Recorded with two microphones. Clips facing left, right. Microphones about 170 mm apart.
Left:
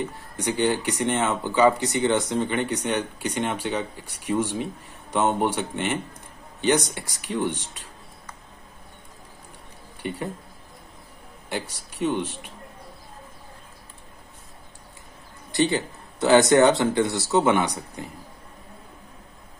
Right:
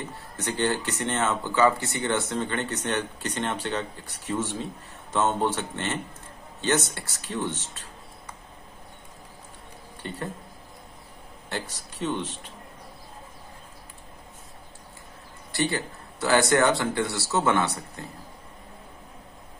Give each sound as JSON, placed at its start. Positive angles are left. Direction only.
{"t": 0.0, "sound": "speech", "side_deg": 15}
{"t": 10.0, "sound": "speech", "side_deg": 15}
{"t": 11.4, "sound": "a man's voice", "side_deg": 10}
{"t": 15.5, "sound": "speech", "side_deg": 20}